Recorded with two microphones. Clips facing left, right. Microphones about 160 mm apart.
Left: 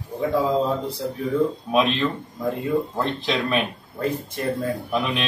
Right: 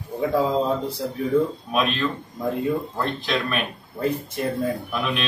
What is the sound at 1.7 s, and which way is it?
Speech, 20° left (ahead or behind).